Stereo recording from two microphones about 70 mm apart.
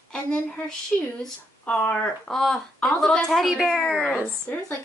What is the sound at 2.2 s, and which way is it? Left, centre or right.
A woman's voice, centre.